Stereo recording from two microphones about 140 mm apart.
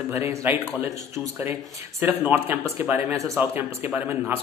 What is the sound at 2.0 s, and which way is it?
A man's voice, 15° right (ahead or behind).